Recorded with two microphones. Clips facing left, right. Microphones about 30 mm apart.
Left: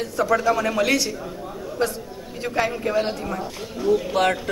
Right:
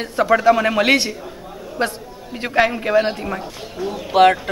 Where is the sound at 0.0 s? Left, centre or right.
Right.